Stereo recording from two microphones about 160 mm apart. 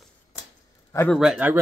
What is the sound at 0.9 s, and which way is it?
Speech, 10° left (ahead or behind).